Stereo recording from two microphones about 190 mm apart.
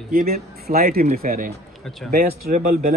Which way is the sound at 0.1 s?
50° right (ahead or behind).